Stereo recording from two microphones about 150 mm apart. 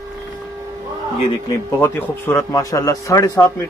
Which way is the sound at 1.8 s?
15° left (ahead or behind).